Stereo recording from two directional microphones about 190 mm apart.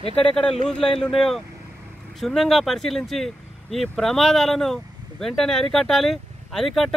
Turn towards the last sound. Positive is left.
turn(degrees=0)  # may be behind; listen again after turning